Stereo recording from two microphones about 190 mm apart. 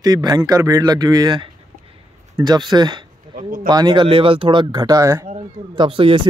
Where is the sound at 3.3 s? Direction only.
45° right (ahead or behind).